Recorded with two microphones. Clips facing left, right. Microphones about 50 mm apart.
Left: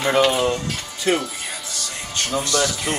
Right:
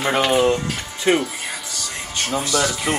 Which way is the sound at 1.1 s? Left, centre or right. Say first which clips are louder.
Right 2 dB; right.